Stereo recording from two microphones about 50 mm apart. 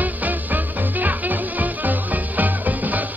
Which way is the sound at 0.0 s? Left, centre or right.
Right.